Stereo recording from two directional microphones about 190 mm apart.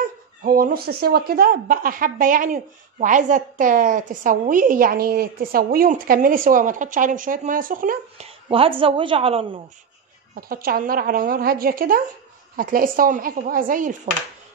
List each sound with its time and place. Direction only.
0.4 s speech: 50° right (ahead or behind)
8.3 s a woman's voice: 30° right (ahead or behind)
10.3 s speech: 50° right (ahead or behind)